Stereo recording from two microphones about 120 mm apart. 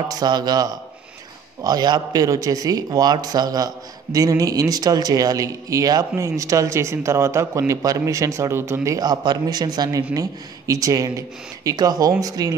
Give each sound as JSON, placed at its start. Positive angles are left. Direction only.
{"t": 0.1, "sound": "a man's voice", "side_deg": -35}